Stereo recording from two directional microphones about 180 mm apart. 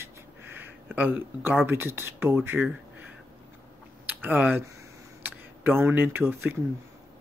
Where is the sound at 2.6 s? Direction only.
10° right (ahead or behind).